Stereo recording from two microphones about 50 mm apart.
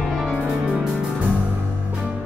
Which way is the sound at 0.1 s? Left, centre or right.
Centre.